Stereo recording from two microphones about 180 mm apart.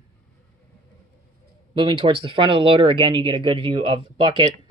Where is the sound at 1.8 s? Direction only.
30° right (ahead or behind).